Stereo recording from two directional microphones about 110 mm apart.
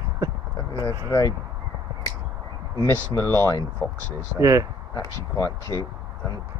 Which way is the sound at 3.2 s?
25° left (ahead or behind).